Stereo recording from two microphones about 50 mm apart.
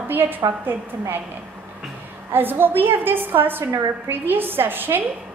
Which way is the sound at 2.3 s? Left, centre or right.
Right.